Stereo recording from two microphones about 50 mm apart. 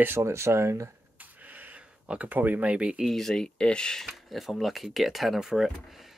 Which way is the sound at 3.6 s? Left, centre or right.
Centre.